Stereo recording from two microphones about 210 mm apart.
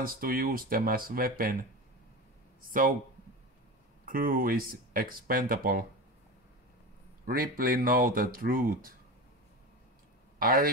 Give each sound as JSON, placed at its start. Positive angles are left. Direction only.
{"t": 0.0, "sound": "speech", "side_deg": -45}
{"t": 4.0, "sound": "speech", "side_deg": -45}
{"t": 7.2, "sound": "speech", "side_deg": -45}
{"t": 10.4, "sound": "speech", "side_deg": -45}